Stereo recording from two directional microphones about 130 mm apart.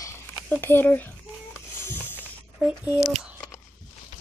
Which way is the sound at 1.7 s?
15° left (ahead or behind).